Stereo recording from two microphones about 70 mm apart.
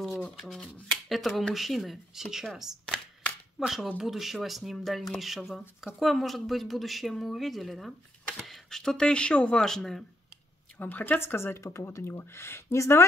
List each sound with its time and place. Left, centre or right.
0.2 s speech: centre
10.8 s speech: left
11.1 s speech: left